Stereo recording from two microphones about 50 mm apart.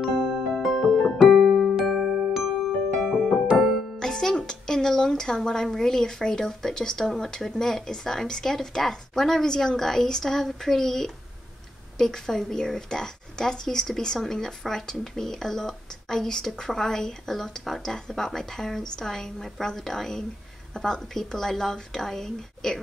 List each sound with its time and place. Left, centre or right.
0.0 s music: centre
0.6 s music: centre
3.5 s music: centre
4.0 s a woman's voice: centre